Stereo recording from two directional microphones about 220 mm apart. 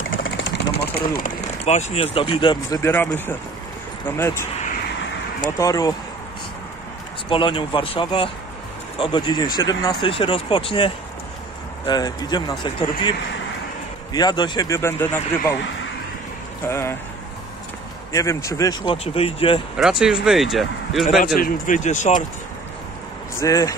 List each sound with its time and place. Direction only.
0.2 s vehicle: 50° left (ahead or behind)
1.2 s a man's voice: 30° left (ahead or behind); by 4.5 s 10° left (ahead or behind)
5.6 s a man's voice: 15° left (ahead or behind)
7.2 s speech: 25° left (ahead or behind)
14.1 s a man's voice: 20° left (ahead or behind)
16.6 s a man's voice: 10° left (ahead or behind)
18.1 s a man's voice: 15° left (ahead or behind)
19.8 s speech: 5° right (ahead or behind)
21.4 s speech: 35° left (ahead or behind)
23.4 s a man's voice: 15° left (ahead or behind)